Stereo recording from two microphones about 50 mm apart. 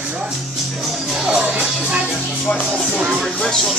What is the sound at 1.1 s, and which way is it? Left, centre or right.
Music, centre.